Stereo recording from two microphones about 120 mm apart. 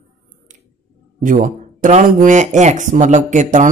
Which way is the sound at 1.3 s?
90° right.